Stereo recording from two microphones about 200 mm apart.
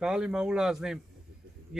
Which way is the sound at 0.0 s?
5° right (ahead or behind).